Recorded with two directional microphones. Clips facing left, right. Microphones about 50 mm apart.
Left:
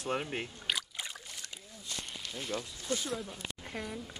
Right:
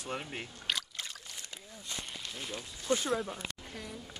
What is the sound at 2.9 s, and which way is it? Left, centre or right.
Speech, right.